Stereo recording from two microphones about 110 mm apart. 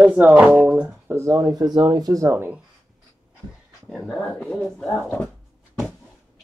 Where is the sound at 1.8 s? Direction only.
35° right (ahead or behind).